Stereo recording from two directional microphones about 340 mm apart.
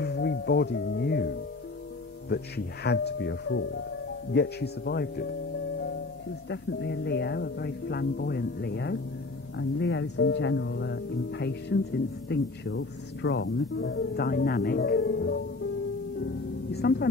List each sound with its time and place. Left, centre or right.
0.0 s music: left
2.2 s speech: left
6.5 s speech: left
16.7 s speech: left